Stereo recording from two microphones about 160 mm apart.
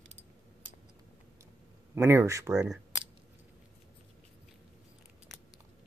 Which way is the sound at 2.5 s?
5° right (ahead or behind).